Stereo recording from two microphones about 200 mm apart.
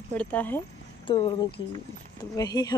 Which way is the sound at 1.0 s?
25° left (ahead or behind).